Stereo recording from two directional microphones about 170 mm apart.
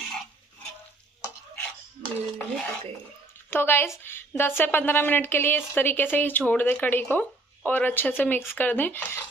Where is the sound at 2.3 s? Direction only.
5° left (ahead or behind).